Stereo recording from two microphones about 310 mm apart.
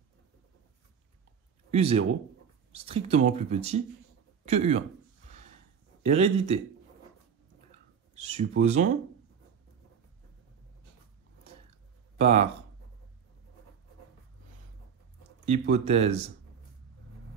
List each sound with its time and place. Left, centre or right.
1.7 s speech: centre
6.0 s speech: right
8.1 s speech: right
12.2 s speech: right
15.7 s speech: right